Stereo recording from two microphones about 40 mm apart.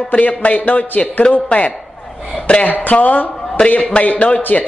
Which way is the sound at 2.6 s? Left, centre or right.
Left.